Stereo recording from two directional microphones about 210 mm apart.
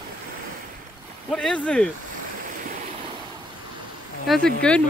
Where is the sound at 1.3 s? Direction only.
5° left (ahead or behind).